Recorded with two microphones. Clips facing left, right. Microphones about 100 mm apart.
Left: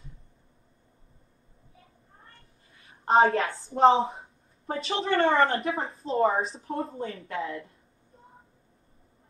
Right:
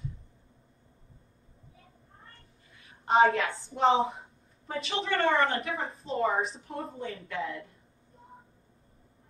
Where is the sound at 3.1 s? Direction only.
40° left (ahead or behind).